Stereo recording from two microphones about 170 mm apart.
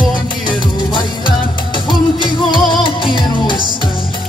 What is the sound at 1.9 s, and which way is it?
Music, 30° left (ahead or behind).